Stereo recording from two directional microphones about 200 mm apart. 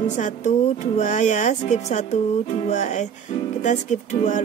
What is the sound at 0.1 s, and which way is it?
Speech, 35° left (ahead or behind).